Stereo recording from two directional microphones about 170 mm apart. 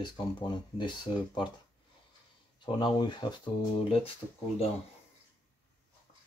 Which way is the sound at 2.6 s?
25° left (ahead or behind).